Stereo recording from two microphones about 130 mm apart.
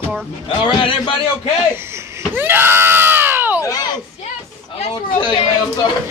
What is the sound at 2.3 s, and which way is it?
Screaming, 15° right (ahead or behind).